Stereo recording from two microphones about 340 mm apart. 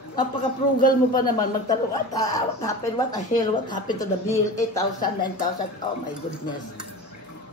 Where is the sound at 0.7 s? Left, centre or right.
Left.